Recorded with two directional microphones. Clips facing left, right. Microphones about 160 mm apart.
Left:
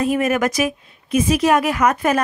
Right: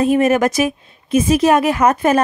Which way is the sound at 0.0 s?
30° right (ahead or behind).